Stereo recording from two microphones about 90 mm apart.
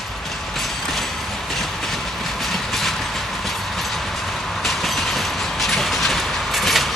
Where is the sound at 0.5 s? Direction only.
Centre (ahead or behind).